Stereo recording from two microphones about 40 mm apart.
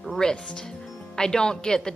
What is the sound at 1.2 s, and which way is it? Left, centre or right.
Speech, centre.